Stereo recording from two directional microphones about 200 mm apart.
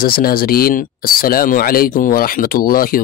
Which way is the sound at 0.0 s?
45° left (ahead or behind).